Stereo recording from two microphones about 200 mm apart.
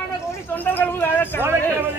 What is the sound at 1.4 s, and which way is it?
Speech, 10° right (ahead or behind).